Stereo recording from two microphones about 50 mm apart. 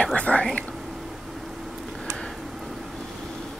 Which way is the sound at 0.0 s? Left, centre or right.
Left.